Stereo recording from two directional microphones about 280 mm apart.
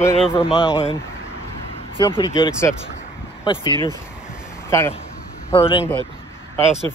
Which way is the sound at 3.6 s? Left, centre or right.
Centre.